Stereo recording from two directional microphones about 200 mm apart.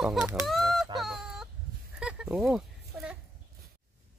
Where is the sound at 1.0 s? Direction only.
Centre (ahead or behind).